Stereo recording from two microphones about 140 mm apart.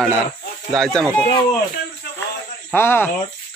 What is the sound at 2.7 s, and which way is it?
Speech, 15° left (ahead or behind).